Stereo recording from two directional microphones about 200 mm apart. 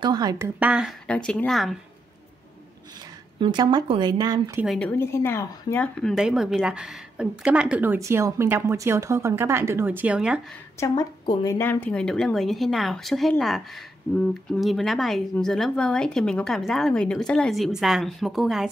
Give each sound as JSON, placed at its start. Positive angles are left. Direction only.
{"t": 0.0, "sound": "speech", "side_deg": -20}
{"t": 0.6, "sound": "speech", "side_deg": -5}
{"t": 3.3, "sound": "speech", "side_deg": -25}
{"t": 4.6, "sound": "speech", "side_deg": 5}
{"t": 10.8, "sound": "speech", "side_deg": 15}